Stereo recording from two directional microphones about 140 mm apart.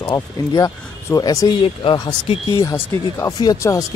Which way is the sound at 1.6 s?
35° left (ahead or behind).